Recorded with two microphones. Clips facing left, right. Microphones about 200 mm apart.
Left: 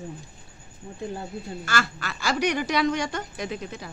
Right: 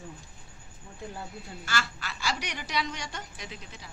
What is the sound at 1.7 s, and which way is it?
Speech, 50° left (ahead or behind).